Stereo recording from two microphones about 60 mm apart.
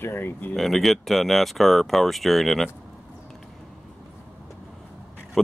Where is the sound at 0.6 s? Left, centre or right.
Centre.